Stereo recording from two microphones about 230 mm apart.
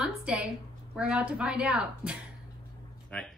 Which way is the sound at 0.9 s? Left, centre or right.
Centre.